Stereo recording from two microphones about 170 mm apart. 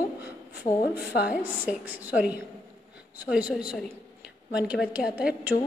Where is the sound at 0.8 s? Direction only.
70° left (ahead or behind).